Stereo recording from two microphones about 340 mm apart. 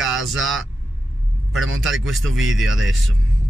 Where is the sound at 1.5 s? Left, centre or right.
Right.